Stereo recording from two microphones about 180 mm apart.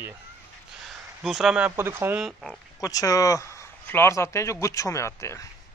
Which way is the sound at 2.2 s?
Centre (ahead or behind).